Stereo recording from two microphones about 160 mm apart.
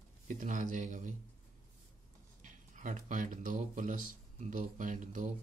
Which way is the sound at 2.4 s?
50° right (ahead or behind).